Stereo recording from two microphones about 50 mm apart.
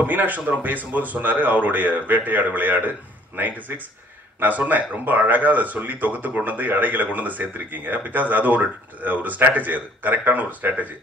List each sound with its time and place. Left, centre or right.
0.0 s speech: right